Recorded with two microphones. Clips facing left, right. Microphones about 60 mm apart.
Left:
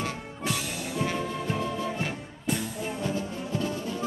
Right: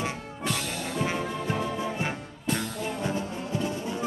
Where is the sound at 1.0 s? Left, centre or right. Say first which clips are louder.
Even; right.